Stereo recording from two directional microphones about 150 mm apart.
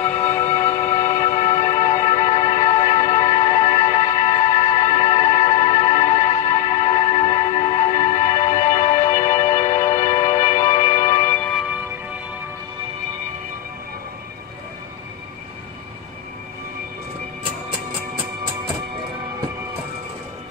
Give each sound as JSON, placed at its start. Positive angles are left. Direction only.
{"t": 0.0, "sound": "music", "side_deg": 10}
{"t": 1.2, "sound": "music", "side_deg": 45}
{"t": 11.2, "sound": "music", "side_deg": 10}
{"t": 11.5, "sound": "music", "side_deg": -5}
{"t": 17.4, "sound": "music", "side_deg": -35}